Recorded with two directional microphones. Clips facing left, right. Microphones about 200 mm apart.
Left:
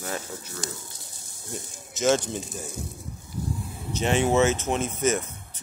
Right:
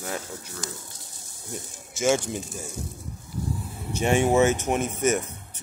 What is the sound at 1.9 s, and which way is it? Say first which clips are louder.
Speech: even; 10° right (ahead or behind).